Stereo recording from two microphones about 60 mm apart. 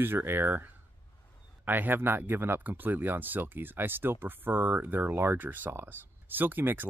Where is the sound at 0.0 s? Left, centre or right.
Right.